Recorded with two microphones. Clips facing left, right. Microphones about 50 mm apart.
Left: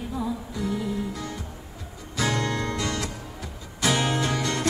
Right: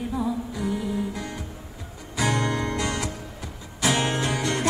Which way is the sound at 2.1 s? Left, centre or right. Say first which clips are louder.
Right 1 dB; right.